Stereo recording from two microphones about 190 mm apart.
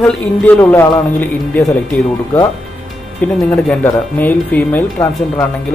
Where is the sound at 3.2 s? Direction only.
10° left (ahead or behind).